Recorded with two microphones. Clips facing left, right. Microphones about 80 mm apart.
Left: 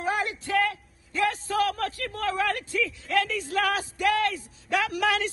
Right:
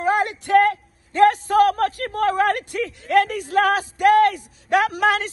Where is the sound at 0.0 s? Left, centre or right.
Right.